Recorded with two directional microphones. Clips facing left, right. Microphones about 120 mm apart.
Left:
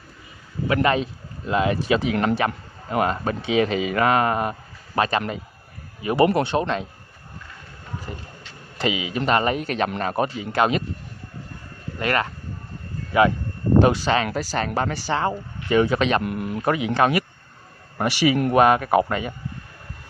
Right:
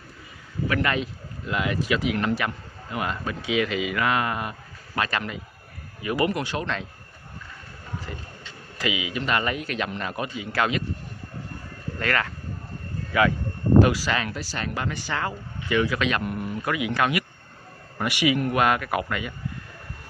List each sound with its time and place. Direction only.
0.7 s speech: 30° left (ahead or behind)
8.1 s speech: 25° left (ahead or behind)
10.5 s speech: 25° left (ahead or behind)
12.0 s speech: 20° left (ahead or behind)
13.7 s speech: 25° left (ahead or behind)
14.3 s speech: 45° left (ahead or behind)